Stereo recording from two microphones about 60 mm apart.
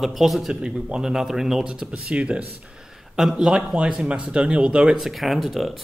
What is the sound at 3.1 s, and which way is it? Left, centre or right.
Speech, centre.